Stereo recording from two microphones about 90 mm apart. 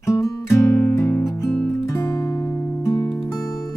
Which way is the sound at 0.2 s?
35° left (ahead or behind).